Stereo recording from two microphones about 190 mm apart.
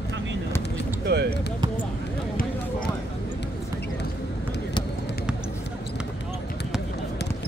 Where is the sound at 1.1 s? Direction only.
60° right (ahead or behind).